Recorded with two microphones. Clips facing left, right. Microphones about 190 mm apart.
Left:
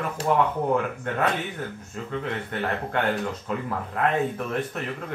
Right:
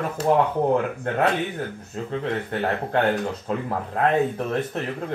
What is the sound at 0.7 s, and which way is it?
Speech, 35° right (ahead or behind).